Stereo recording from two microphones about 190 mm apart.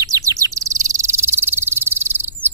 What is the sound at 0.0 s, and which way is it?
Bird, 15° right (ahead or behind).